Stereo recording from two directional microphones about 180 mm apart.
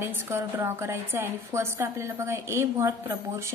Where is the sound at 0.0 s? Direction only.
15° right (ahead or behind).